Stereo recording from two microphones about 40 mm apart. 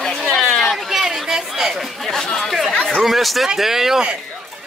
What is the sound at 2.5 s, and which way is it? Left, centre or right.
Chatter, centre.